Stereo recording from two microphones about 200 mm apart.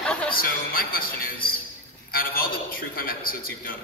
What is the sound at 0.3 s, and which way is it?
A man's voice, 45° left (ahead or behind).